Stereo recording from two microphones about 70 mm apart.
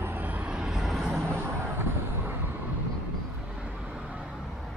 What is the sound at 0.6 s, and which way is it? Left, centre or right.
Vehicle, centre.